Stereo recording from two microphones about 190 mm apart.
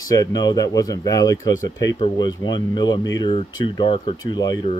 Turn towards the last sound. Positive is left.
turn(degrees=20)  # may be behind; listen again after turning